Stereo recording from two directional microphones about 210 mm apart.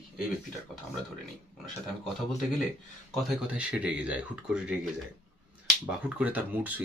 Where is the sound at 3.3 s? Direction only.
5° right (ahead or behind).